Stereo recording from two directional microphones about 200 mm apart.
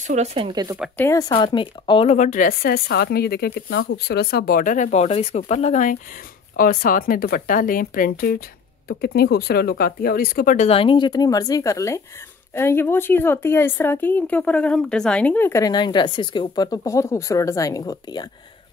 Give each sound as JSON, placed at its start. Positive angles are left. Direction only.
{"t": 0.0, "sound": "speech", "side_deg": -35}
{"t": 0.9, "sound": "speech", "side_deg": 10}
{"t": 1.3, "sound": "speech", "side_deg": 25}